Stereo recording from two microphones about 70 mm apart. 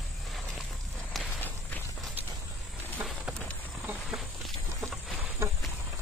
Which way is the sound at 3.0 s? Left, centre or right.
Right.